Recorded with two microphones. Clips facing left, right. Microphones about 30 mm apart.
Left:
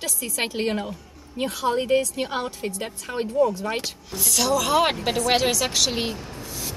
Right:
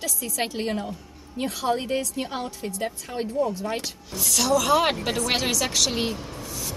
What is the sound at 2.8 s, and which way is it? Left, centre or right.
Speech, centre.